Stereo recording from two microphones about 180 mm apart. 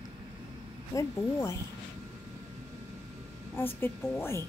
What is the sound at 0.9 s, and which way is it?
Speech, 15° left (ahead or behind).